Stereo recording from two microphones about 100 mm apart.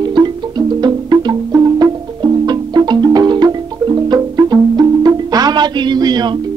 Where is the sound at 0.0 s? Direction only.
45° right (ahead or behind).